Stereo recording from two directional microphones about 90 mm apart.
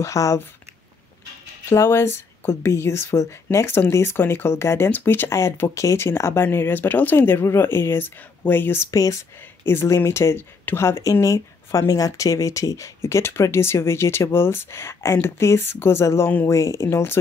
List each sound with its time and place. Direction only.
0.0 s speech: 35° left (ahead or behind)
1.7 s speech: 30° left (ahead or behind)
8.9 s speech: 40° left (ahead or behind)
9.7 s speech: 25° left (ahead or behind)